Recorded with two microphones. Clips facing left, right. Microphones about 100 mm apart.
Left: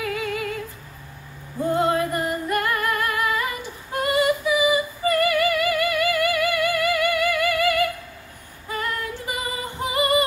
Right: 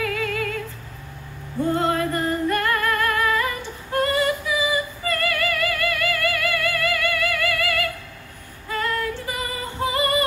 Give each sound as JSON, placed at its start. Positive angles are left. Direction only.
{"t": 0.0, "sound": "music", "side_deg": 20}
{"t": 1.7, "sound": "music", "side_deg": 20}
{"t": 4.0, "sound": "singing", "side_deg": 20}
{"t": 8.6, "sound": "female singing", "side_deg": 20}